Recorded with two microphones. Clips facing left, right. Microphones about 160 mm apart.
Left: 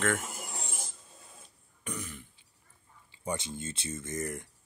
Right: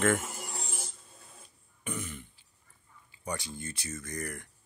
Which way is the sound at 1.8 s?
Centre (ahead or behind).